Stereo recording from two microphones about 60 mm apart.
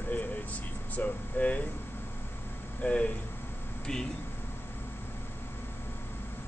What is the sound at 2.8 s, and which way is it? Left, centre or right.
Speech, centre.